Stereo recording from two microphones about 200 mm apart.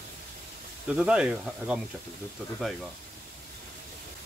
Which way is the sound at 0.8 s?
5° right (ahead or behind).